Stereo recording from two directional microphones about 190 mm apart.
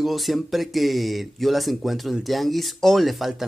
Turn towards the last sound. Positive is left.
turn(degrees=0)  # may be behind; listen again after turning